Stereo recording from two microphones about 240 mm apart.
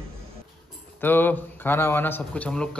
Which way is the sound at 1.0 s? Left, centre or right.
Centre.